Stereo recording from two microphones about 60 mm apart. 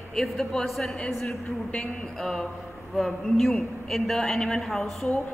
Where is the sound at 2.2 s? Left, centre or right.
Centre.